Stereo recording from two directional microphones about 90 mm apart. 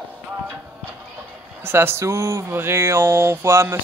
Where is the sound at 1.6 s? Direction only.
25° right (ahead or behind).